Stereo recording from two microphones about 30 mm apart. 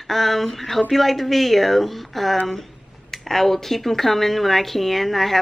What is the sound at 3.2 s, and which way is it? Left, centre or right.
A woman's voice, centre.